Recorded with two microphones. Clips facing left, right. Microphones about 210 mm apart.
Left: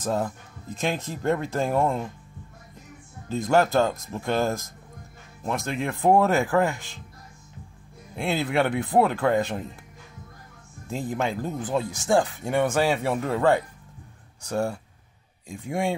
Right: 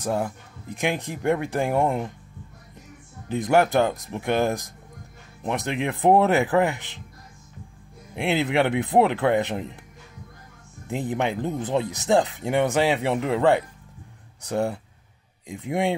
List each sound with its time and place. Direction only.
0.0 s speech: 10° right (ahead or behind)
3.3 s speech: 15° right (ahead or behind)
8.2 s speech: 20° right (ahead or behind)
10.9 s speech: 20° right (ahead or behind)